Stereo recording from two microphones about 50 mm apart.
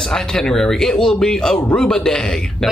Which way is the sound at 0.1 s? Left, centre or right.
Centre.